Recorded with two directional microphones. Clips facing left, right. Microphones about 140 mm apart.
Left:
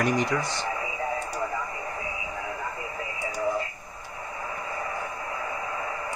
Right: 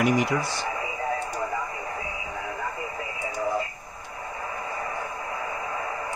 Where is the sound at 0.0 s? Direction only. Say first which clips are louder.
Right 2 dB; 10° right (ahead or behind).